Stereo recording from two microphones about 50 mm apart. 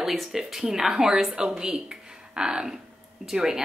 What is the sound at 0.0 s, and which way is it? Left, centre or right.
Speech, centre.